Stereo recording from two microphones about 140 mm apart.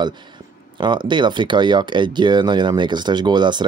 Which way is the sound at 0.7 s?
35° right (ahead or behind).